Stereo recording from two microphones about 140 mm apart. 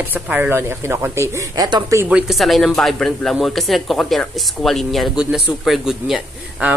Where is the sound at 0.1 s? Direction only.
10° right (ahead or behind); by 2.0 s 30° right (ahead or behind).